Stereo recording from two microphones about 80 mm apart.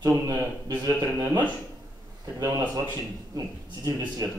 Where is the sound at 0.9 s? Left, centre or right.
Right.